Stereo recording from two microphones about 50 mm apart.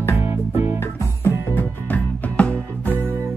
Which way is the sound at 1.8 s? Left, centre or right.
Left.